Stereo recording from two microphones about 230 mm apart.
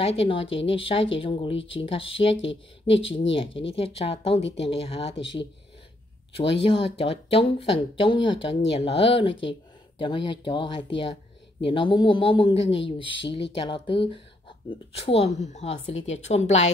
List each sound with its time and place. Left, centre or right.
0.0 s speech: left
6.4 s speech: left